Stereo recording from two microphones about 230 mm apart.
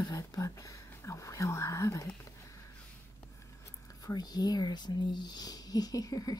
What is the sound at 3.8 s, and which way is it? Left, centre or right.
Whispering, centre.